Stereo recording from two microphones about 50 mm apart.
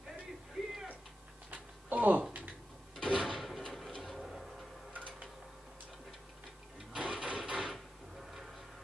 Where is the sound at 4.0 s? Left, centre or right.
Centre.